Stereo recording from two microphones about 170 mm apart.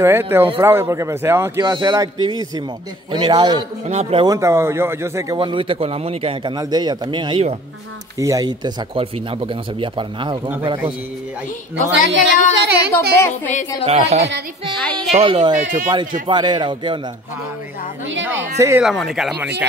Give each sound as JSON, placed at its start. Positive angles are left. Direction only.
{"t": 0.0, "sound": "speech", "side_deg": -15}
{"t": 1.6, "sound": "speech", "side_deg": -25}
{"t": 3.8, "sound": "a man's voice", "side_deg": -40}
{"t": 4.3, "sound": "speech", "side_deg": -15}
{"t": 5.4, "sound": "speech", "side_deg": -30}
{"t": 11.9, "sound": "a woman's voice", "side_deg": -90}
{"t": 13.8, "sound": "a man's voice", "side_deg": -40}
{"t": 14.8, "sound": "speech", "side_deg": 5}
{"t": 15.0, "sound": "a man's voice", "side_deg": -35}
{"t": 15.6, "sound": "a man's voice", "side_deg": -50}
{"t": 16.3, "sound": "speech", "side_deg": -25}
{"t": 18.8, "sound": "speech", "side_deg": 0}